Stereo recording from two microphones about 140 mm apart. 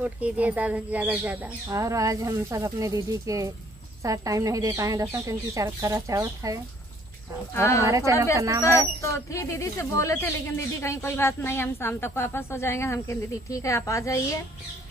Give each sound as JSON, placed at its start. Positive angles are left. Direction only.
{"t": 0.0, "sound": "speech", "side_deg": -10}
{"t": 1.7, "sound": "speech", "side_deg": -20}
{"t": 7.5, "sound": "speech", "side_deg": 20}
{"t": 7.8, "sound": "speech", "side_deg": -20}
{"t": 8.7, "sound": "speech", "side_deg": 20}